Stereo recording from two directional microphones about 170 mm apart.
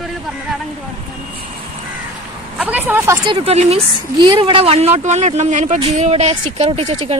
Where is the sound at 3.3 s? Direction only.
35° right (ahead or behind).